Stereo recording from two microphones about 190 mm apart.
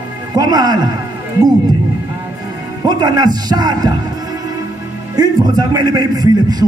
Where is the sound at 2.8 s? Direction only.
20° right (ahead or behind).